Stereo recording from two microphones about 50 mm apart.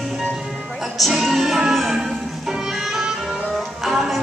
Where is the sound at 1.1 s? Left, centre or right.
Centre.